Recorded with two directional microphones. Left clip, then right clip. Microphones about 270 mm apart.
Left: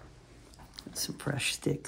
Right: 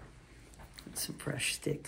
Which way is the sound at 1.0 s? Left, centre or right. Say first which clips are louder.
Left 3 dB; left.